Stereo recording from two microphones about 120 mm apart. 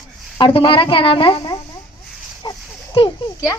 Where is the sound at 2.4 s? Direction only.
35° left (ahead or behind).